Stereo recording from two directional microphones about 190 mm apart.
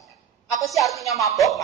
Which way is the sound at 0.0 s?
Centre (ahead or behind).